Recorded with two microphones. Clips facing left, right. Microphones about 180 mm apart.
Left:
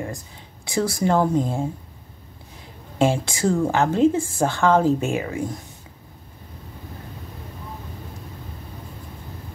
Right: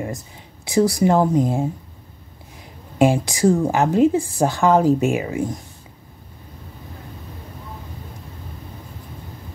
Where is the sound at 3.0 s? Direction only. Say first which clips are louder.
Right 4 dB; 15° right (ahead or behind).